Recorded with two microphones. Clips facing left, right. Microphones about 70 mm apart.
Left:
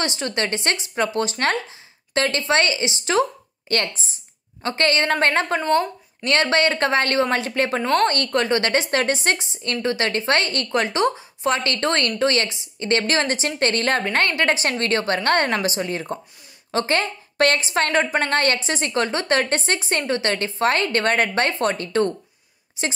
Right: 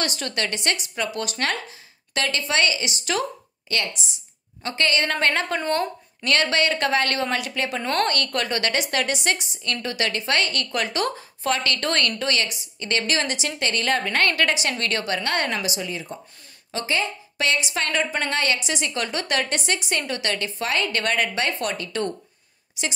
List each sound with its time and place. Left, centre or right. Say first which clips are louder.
0.0 s speech: left 3 dB; left
3.6 s a woman's voice: left 4 dB; left
17.6 s a woman's voice: left 5 dB; left